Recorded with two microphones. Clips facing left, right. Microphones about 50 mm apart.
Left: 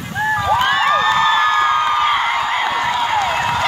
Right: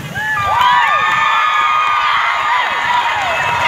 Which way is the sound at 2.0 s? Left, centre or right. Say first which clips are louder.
Right 2 dB; right.